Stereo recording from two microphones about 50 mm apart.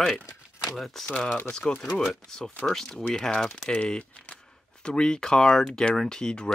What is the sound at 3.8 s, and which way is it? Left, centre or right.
Speech, left.